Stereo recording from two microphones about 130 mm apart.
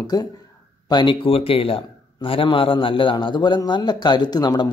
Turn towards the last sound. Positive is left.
turn(degrees=30)  # may be behind; listen again after turning